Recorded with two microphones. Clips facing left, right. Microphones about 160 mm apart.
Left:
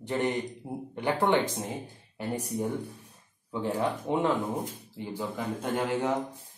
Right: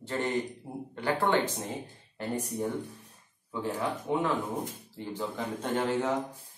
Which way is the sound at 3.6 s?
30° left (ahead or behind).